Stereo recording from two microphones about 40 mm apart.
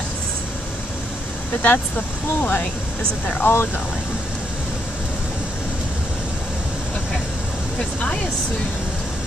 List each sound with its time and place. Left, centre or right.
1.6 s speech: left
3.4 s speech: left